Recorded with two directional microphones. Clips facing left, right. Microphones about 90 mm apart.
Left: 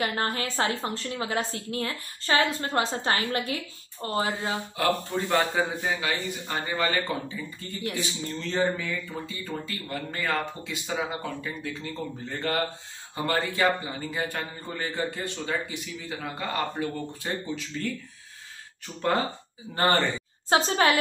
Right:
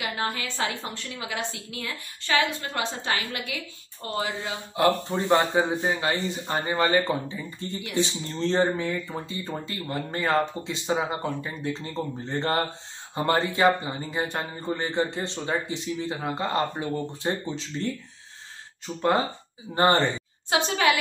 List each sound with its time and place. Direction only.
0.0 s a woman's voice: 45° left (ahead or behind)
4.3 s speech: 25° left (ahead or behind)
4.7 s speech: 20° right (ahead or behind)
7.9 s speech: 35° right (ahead or behind)
18.9 s speech: 20° right (ahead or behind)
20.4 s a woman's voice: 35° left (ahead or behind)